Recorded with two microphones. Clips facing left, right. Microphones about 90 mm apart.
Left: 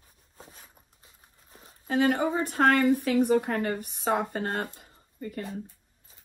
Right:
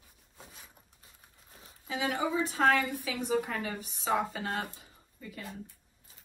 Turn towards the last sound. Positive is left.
turn(degrees=50)  # may be behind; listen again after turning